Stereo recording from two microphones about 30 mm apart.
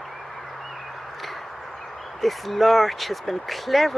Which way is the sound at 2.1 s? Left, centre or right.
Centre.